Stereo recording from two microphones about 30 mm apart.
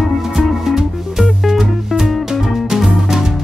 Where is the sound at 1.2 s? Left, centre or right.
Centre.